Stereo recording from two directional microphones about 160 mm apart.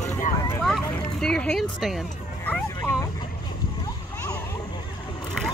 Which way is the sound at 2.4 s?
10° left (ahead or behind).